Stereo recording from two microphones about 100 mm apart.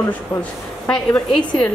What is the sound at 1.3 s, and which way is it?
Speech, 50° left (ahead or behind).